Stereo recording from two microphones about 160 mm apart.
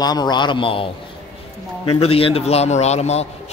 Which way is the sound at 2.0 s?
35° left (ahead or behind).